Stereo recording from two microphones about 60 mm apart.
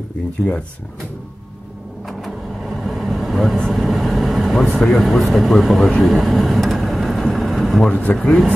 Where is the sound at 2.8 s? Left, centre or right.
Centre.